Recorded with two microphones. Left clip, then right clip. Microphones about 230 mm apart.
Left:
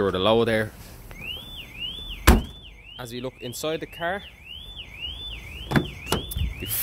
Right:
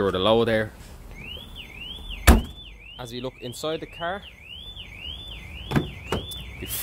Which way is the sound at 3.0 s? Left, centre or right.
Centre.